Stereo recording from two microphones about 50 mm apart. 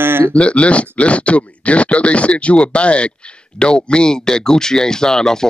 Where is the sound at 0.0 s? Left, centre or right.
Right.